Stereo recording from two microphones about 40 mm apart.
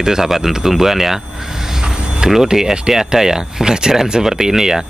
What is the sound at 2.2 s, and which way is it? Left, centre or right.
Speech, centre.